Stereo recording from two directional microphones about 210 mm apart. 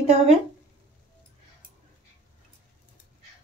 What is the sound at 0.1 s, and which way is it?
Speech, 30° right (ahead or behind).